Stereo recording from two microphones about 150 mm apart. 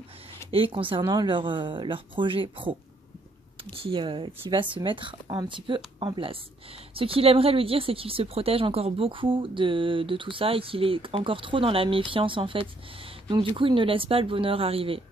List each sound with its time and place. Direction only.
0.5 s speech: 40° right (ahead or behind)
3.8 s speech: 35° right (ahead or behind)